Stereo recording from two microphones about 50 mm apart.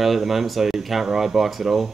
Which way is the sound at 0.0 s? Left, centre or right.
Centre.